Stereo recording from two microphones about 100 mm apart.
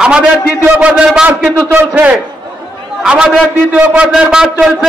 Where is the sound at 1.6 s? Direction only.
25° right (ahead or behind).